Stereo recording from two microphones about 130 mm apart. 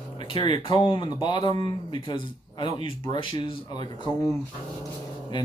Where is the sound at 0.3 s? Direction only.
40° left (ahead or behind).